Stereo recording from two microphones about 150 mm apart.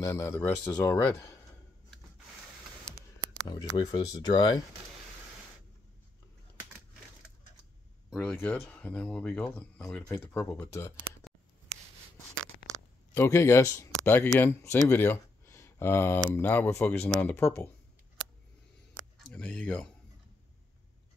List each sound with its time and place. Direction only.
0.0 s speech: 20° left (ahead or behind)
3.4 s speech: 30° left (ahead or behind)
8.2 s speech: 10° left (ahead or behind)
13.1 s speech: 20° left (ahead or behind)
14.9 s a sound: 15° left (ahead or behind)
16.3 s speech: 15° left (ahead or behind)
19.1 s speech: 5° left (ahead or behind)